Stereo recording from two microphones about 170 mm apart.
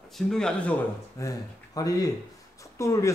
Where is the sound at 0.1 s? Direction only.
5° left (ahead or behind).